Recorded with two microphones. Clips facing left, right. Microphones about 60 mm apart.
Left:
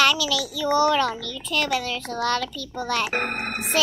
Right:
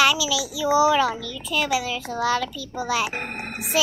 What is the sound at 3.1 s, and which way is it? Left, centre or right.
Speech, left.